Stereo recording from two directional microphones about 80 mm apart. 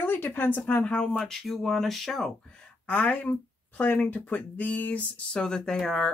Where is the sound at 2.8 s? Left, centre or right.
Centre.